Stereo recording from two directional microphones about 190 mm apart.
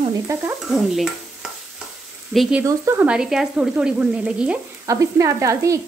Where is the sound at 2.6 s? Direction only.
10° right (ahead or behind).